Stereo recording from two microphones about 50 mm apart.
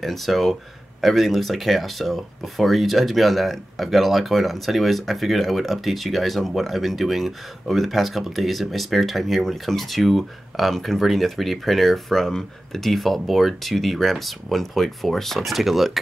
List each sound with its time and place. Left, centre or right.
0.0 s speech: centre